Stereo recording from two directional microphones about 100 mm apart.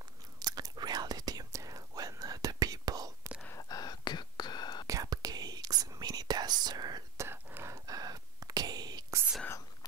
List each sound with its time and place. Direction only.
0.4 s whispering: 40° right (ahead or behind)
3.5 s whispering: 40° left (ahead or behind)
4.8 s whispering: 35° right (ahead or behind)
7.2 s whispering: 25° right (ahead or behind); by 9.2 s 40° right (ahead or behind)